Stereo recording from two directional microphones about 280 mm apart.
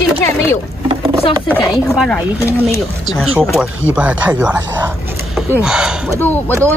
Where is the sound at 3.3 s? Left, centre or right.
Centre.